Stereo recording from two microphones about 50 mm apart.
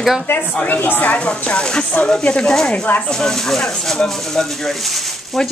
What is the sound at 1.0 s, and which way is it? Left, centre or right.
Speech, left.